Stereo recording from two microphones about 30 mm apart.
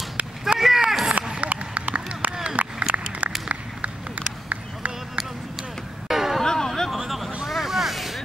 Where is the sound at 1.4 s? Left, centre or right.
Right.